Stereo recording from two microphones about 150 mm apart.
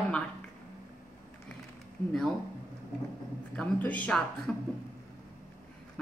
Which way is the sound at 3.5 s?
10° left (ahead or behind).